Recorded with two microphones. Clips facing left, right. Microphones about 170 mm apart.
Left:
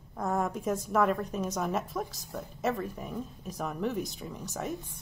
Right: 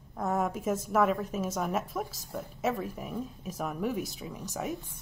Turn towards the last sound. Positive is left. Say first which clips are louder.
# right 1 dB
turn(degrees=-5)  # may be behind; listen again after turning